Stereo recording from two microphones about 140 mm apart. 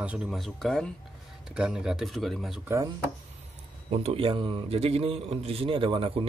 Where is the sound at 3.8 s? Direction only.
50° right (ahead or behind).